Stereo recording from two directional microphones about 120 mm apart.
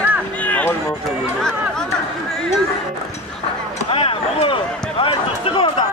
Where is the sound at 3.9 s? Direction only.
50° left (ahead or behind).